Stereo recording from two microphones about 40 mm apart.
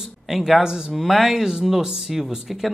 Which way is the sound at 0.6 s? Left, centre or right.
Centre.